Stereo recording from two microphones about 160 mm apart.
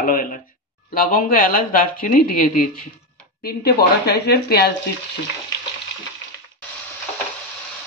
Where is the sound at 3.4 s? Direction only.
85° left.